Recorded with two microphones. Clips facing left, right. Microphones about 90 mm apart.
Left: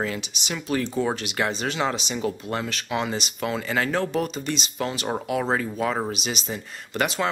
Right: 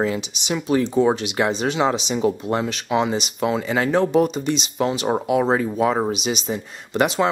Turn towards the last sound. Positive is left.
turn(degrees=-10)  # may be behind; listen again after turning